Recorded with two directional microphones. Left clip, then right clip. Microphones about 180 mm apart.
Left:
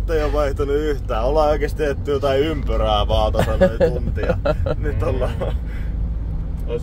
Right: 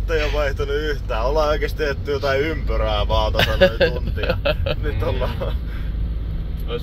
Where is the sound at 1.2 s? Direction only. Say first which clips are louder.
Left 2 dB; 30° left (ahead or behind).